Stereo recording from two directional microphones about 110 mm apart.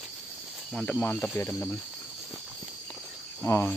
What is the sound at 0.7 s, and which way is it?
Speech, 10° left (ahead or behind).